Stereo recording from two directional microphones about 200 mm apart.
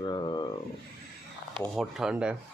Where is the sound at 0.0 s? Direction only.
20° left (ahead or behind).